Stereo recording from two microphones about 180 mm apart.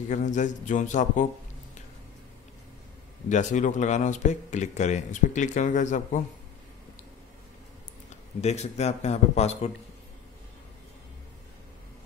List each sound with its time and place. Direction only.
0.1 s a man's voice: 45° left (ahead or behind)
3.3 s speech: 45° left (ahead or behind)
8.4 s speech: 40° left (ahead or behind)